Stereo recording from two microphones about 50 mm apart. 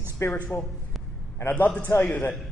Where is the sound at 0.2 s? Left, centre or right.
Left.